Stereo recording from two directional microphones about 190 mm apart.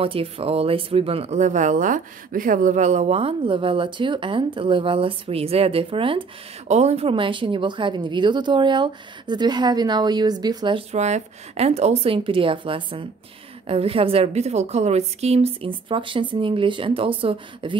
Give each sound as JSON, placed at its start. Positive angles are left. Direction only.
{"t": 0.0, "sound": "speech", "side_deg": -30}